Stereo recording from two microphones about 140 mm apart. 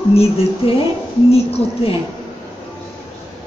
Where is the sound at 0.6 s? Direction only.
45° left (ahead or behind).